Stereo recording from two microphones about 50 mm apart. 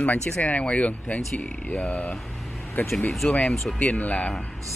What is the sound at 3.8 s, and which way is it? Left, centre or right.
Speech, left.